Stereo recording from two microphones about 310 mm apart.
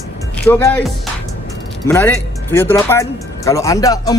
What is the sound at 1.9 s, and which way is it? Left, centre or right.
Speech, centre.